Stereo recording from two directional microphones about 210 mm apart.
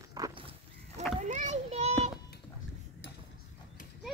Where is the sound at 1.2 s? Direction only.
35° right (ahead or behind).